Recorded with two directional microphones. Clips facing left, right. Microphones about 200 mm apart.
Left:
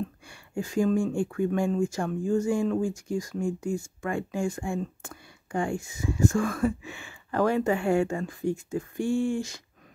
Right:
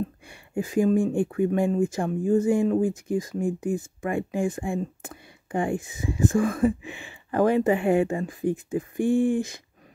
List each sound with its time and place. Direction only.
0.3 s speech: 20° right (ahead or behind)
8.9 s speech: 55° right (ahead or behind)